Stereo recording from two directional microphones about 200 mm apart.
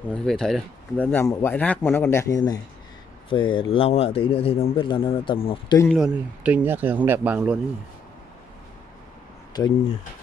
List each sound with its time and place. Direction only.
0.1 s speech: 5° left (ahead or behind); by 5.8 s 25° left (ahead or behind)
5.9 s speech: 5° right (ahead or behind)
9.5 s speech: 20° left (ahead or behind)